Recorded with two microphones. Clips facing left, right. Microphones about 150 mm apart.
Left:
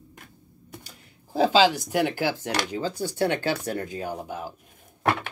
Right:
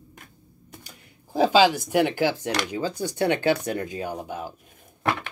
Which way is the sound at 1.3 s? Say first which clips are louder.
Right 1 dB; 15° right (ahead or behind).